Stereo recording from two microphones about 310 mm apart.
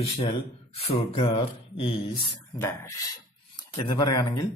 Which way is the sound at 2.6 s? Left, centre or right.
Centre.